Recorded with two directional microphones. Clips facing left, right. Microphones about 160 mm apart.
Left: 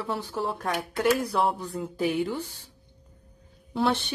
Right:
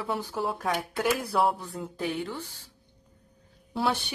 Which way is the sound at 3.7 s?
5° right (ahead or behind).